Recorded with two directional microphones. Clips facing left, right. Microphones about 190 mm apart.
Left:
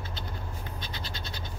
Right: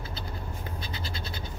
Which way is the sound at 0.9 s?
5° right (ahead or behind).